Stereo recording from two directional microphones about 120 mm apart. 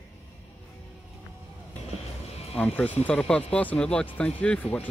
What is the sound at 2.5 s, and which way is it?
Speech, 15° left (ahead or behind).